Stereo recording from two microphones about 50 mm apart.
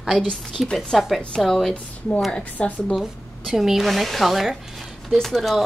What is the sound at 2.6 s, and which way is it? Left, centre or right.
Speech, left.